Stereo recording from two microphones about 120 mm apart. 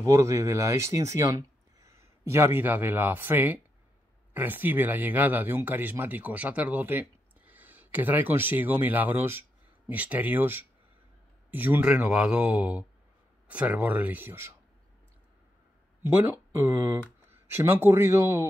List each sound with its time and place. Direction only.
0.0 s speech: 25° right (ahead or behind)
16.1 s speech: 25° right (ahead or behind)